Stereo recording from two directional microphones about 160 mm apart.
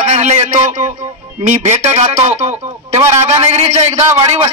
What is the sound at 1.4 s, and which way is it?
A man's voice, 45° right (ahead or behind).